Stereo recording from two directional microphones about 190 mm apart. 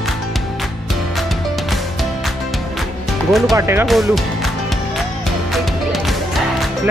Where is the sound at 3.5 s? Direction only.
15° right (ahead or behind).